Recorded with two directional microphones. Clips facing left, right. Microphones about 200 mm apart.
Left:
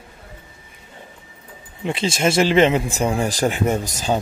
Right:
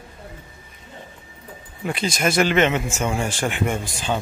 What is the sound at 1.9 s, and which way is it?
A man's voice, 25° left (ahead or behind).